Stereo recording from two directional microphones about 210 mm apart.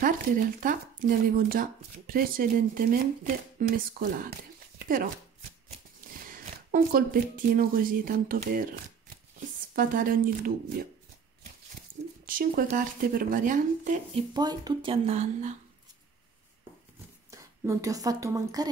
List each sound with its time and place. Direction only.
0.0 s speech: 40° right (ahead or behind)
4.7 s a sound: 40° right (ahead or behind)
6.0 s speech: 40° right (ahead or behind)
9.8 s speech: 40° right (ahead or behind)
12.3 s speech: 45° right (ahead or behind)
14.1 s speech: 20° right (ahead or behind)
17.3 s speech: 15° right (ahead or behind)